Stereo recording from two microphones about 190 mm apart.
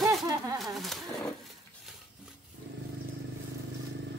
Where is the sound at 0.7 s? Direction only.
Centre (ahead or behind).